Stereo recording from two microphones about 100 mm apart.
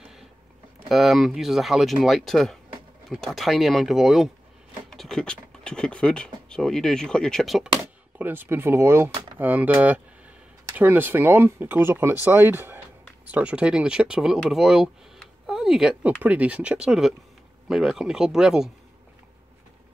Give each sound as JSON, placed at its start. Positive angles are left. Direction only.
{"t": 0.0, "sound": "a sound", "side_deg": -5}
{"t": 0.8, "sound": "speech", "side_deg": 0}
{"t": 8.2, "sound": "speech", "side_deg": -20}